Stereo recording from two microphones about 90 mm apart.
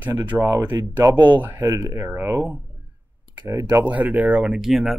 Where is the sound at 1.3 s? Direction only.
20° right (ahead or behind).